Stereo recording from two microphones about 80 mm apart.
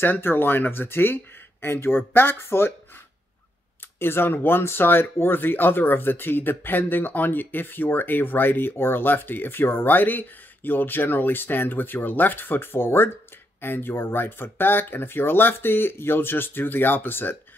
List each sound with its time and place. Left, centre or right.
0.0 s speech: left
4.0 s speech: left